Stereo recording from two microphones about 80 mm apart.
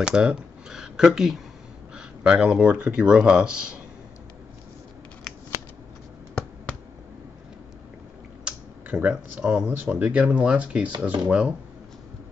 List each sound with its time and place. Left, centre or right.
0.0 s speech: centre
8.5 s computer keyboard: centre
9.1 s speech: centre
9.7 s speech: right